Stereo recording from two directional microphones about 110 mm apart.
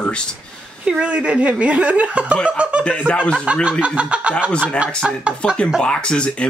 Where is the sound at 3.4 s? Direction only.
10° right (ahead or behind).